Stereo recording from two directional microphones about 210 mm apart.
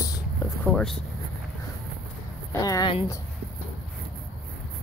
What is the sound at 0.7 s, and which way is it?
Speech, 5° left (ahead or behind).